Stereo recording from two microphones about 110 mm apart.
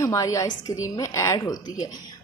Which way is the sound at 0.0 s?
30° left (ahead or behind).